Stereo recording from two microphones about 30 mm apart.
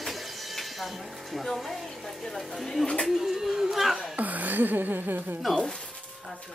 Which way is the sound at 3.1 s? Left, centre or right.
Centre.